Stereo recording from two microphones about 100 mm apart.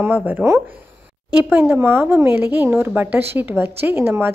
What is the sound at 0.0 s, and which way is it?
A woman's voice, 15° right (ahead or behind).